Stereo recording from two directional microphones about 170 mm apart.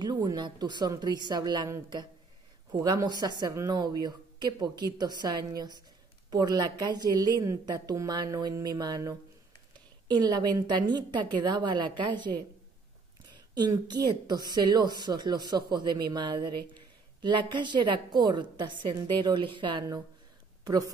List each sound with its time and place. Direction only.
0.0 s a woman's voice: 25° right (ahead or behind)